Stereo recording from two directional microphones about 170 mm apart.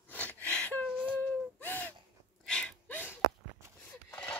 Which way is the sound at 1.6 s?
10° left (ahead or behind).